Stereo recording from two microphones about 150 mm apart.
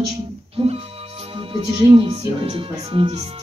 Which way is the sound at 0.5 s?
40° right (ahead or behind).